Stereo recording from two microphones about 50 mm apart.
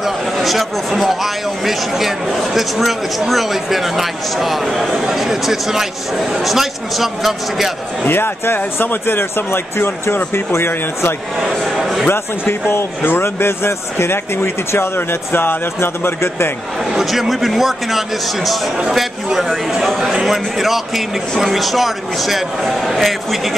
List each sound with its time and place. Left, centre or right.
0.0 s speech: centre
8.1 s speech: left
11.5 s speech: centre
12.1 s speech: left
16.9 s speech: centre